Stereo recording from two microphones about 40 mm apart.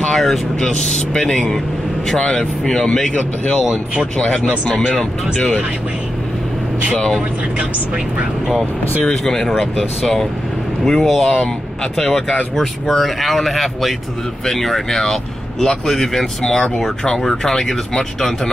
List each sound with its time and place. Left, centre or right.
0.1 s speech: centre
0.7 s speech: left
3.6 s speech: centre
4.2 s speech: left
9.0 s speech: centre
10.8 s speech: centre
11.1 s speech: centre
12.0 s speech: centre
12.8 s speech: centre